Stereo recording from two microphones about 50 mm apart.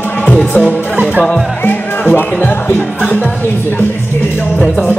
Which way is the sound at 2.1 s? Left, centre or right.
Left.